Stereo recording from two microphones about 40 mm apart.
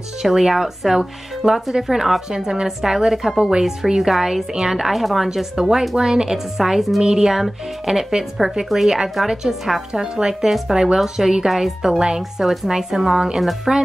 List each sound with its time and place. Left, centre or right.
0.2 s a woman's voice: centre
2.3 s a woman's voice: centre
7.0 s a woman's voice: centre
10.1 s a woman's voice: centre
13.7 s speech: right